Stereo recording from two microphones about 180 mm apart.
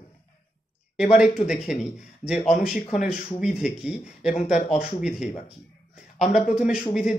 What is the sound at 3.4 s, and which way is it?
Speech, 5° right (ahead or behind).